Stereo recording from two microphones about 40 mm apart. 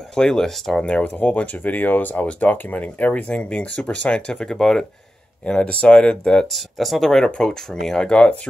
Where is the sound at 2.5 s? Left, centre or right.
Left.